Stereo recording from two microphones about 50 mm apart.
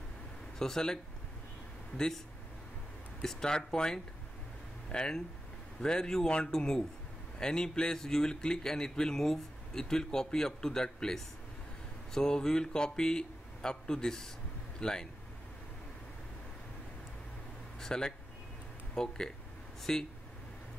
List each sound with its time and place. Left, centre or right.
0.6 s a man's voice: centre
1.9 s speech: left
3.3 s a man's voice: centre
17.7 s a man's voice: centre